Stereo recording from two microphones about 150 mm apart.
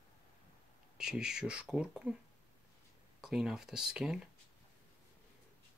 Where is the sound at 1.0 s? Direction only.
5° right (ahead or behind).